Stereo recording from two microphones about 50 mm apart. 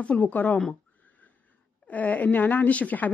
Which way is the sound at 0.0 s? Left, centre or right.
Left.